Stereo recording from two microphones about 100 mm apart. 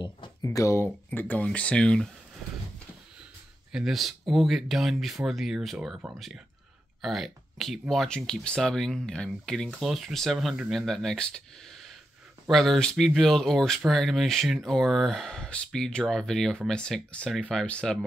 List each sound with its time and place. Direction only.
0.4 s speech: 30° left (ahead or behind)
0.8 s speech: 20° left (ahead or behind)
3.7 s speech: centre (ahead or behind)